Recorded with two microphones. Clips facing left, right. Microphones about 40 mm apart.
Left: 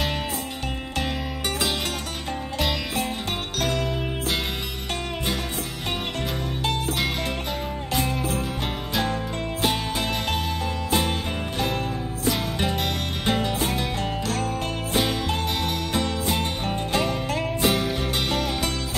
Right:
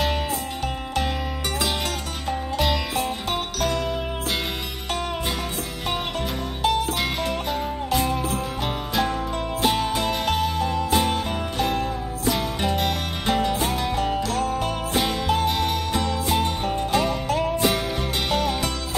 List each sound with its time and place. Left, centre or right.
2.5 s music: centre
6.6 s music: centre
9.6 s music: centre
14.3 s music: left
14.6 s music: centre